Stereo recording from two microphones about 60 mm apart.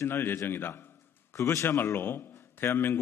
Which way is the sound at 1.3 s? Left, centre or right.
Left.